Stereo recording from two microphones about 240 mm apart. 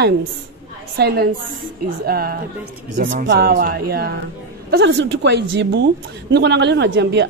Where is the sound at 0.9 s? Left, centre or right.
Right.